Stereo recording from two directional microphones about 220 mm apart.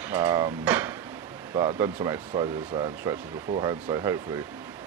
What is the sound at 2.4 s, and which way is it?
Speech, 25° right (ahead or behind).